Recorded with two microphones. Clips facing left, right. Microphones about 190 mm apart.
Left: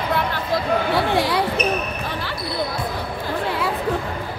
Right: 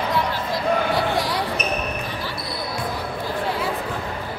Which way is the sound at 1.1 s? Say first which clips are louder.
Left 4 dB; 60° left (ahead or behind).